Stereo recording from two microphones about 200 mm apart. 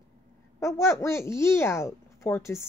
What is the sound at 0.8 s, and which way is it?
A woman's voice, 15° left (ahead or behind).